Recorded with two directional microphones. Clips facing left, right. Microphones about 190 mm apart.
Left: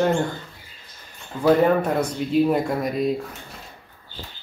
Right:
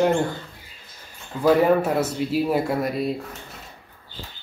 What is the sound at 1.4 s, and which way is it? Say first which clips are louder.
Speech: even; 5° right (ahead or behind).